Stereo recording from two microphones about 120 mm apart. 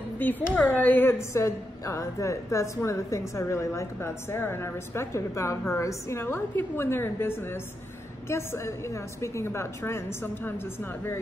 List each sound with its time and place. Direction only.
0.2 s a woman's voice: 15° left (ahead or behind)